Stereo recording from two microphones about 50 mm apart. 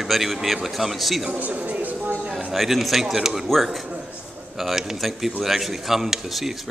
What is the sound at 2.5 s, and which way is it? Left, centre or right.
Speech, centre.